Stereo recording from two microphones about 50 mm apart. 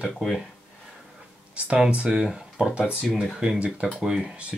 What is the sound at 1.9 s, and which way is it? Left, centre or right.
Speech, centre.